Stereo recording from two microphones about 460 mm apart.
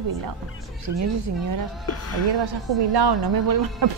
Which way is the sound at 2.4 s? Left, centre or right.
Right.